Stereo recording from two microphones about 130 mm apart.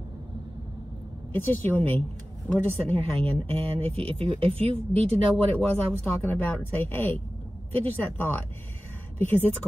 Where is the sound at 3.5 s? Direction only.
45° right (ahead or behind).